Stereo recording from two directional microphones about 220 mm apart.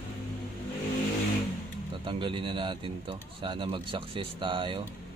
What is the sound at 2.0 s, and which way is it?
Speech, 20° right (ahead or behind).